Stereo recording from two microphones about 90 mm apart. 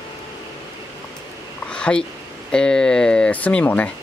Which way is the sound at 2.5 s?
10° left (ahead or behind).